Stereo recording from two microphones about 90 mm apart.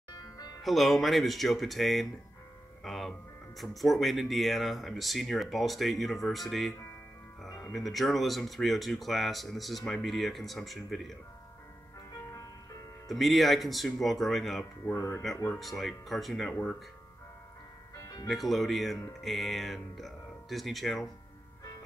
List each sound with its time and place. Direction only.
0.1 s music: 50° left (ahead or behind)
0.6 s speech: centre (ahead or behind)
7.7 s speech: centre (ahead or behind)
12.3 s music: 40° left (ahead or behind)
13.1 s speech: centre (ahead or behind)
14.9 s speech: 30° left (ahead or behind)
15.6 s speech: centre (ahead or behind)
17.9 s music: 40° left (ahead or behind)
18.2 s speech: centre (ahead or behind)